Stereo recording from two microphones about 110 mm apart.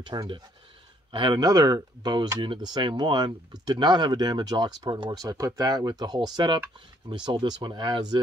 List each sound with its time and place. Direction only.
0.0 s speech: 40° right (ahead or behind)